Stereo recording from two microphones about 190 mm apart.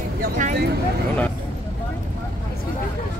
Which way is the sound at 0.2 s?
40° right (ahead or behind).